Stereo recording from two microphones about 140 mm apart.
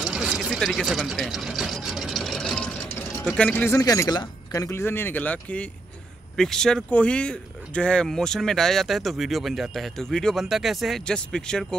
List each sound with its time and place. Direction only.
0.0 s a sound: 5° right (ahead or behind)
3.3 s speech: 10° left (ahead or behind)
3.8 s speech: 25° left (ahead or behind); by 11.6 s 5° left (ahead or behind)